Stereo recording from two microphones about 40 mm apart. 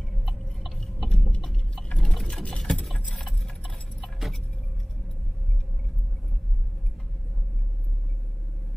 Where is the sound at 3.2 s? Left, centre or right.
Centre.